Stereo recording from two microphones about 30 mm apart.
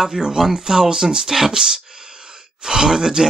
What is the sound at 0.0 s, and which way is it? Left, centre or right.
Speech, right.